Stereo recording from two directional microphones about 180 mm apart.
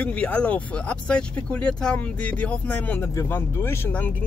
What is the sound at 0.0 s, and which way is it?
Speech, 5° left (ahead or behind).